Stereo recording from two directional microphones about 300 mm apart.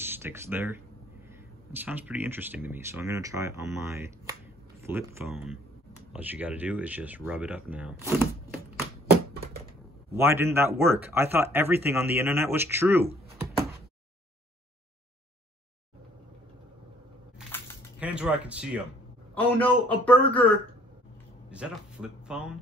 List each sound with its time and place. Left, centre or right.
0.0 s speech: centre
10.1 s speech: centre
17.9 s speech: centre